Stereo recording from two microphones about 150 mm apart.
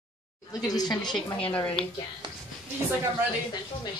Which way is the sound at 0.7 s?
25° left (ahead or behind).